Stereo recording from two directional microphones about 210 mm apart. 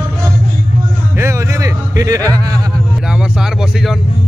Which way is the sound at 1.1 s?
15° right (ahead or behind).